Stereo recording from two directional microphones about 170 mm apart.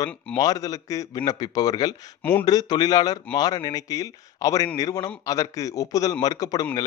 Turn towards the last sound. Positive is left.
turn(degrees=20)  # may be behind; listen again after turning